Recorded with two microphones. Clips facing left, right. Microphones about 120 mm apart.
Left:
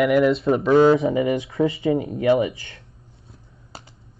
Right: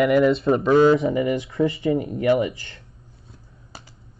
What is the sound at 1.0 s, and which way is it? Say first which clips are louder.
Speech: left 1 dB; 25° left (ahead or behind).